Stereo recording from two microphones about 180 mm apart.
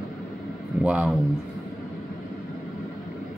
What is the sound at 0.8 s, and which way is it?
Speech, 5° right (ahead or behind).